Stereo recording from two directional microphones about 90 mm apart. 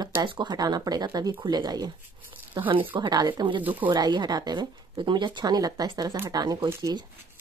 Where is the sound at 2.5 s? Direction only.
70° right (ahead or behind).